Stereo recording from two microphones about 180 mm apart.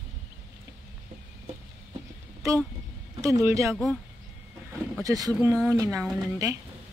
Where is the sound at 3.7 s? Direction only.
5° left (ahead or behind).